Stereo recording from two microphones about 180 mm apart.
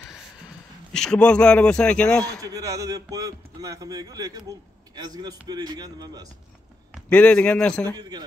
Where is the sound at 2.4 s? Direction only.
20° right (ahead or behind).